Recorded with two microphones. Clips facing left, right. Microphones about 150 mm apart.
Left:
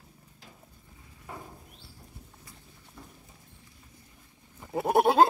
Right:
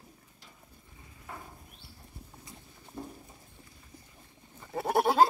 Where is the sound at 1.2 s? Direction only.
10° left (ahead or behind).